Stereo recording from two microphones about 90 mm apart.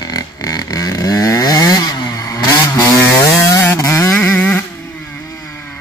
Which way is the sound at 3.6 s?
30° left (ahead or behind).